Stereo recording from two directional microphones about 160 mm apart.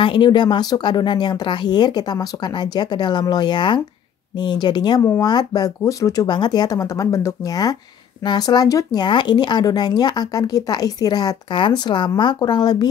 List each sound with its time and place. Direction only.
0.0 s speech: 30° left (ahead or behind)